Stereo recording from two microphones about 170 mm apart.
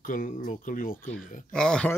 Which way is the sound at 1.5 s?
5° left (ahead or behind).